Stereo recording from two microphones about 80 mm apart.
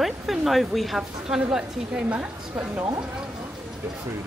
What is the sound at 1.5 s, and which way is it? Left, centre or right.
A woman's voice, centre.